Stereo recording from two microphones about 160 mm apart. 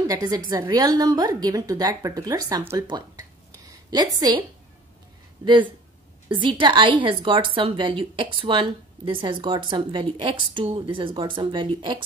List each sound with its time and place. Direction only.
0.1 s a woman's voice: 25° right (ahead or behind)
3.5 s a sound: 20° right (ahead or behind)
5.4 s a woman's voice: 30° right (ahead or behind)